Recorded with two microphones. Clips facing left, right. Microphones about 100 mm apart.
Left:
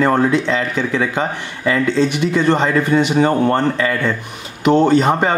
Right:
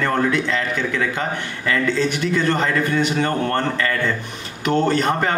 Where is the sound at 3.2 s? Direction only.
15° left (ahead or behind).